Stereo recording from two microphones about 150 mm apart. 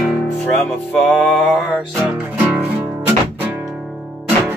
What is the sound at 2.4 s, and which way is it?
Music, 10° right (ahead or behind).